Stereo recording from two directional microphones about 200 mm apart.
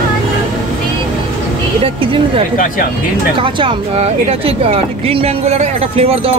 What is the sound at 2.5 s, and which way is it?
Speech, 40° left (ahead or behind).